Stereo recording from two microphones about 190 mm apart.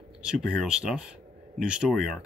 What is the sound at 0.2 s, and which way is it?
Speech, 5° right (ahead or behind).